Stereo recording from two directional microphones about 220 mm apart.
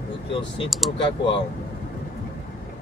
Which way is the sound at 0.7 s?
Centre (ahead or behind).